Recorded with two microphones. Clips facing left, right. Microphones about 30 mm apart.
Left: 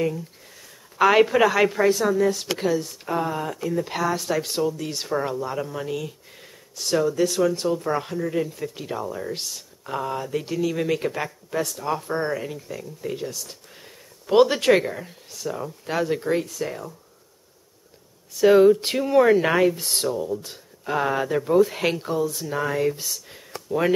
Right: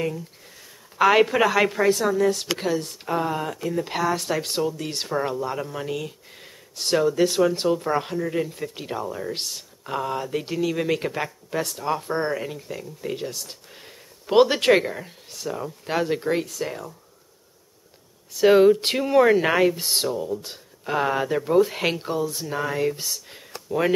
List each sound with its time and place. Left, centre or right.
0.9 s a woman's voice: centre
6.8 s speech: right
9.3 s speech: right
9.9 s speech: centre
18.4 s speech: right
18.9 s speech: centre
22.5 s a woman's voice: centre
23.0 s a sound: centre